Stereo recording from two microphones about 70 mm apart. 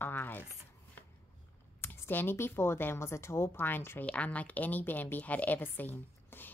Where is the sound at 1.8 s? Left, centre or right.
Left.